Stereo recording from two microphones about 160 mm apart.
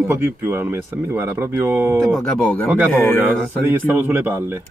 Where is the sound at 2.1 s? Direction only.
5° left (ahead or behind).